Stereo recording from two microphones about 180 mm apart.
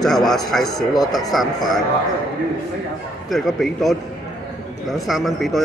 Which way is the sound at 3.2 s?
Centre (ahead or behind).